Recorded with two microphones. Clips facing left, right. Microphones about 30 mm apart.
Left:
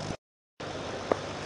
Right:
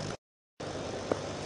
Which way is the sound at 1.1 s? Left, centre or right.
Left.